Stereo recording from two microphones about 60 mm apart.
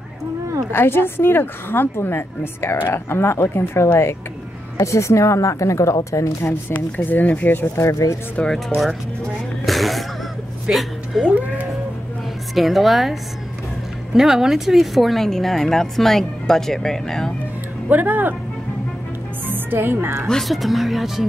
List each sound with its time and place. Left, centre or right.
0.7 s a woman's voice: left
4.7 s a woman's voice: left
6.4 s a woman's voice: left
7.8 s a woman's voice: left
8.6 s speech: centre
9.7 s music: centre
10.7 s speech: centre
11.2 s speech: right
12.5 s speech: centre
17.8 s speech: right
19.5 s a woman's voice: right
20.2 s speech: centre